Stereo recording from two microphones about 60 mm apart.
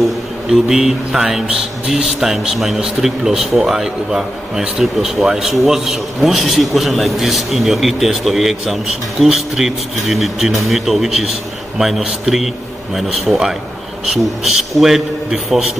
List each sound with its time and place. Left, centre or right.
0.5 s speech: centre